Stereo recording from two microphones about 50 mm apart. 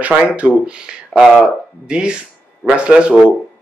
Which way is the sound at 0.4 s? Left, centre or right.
Right.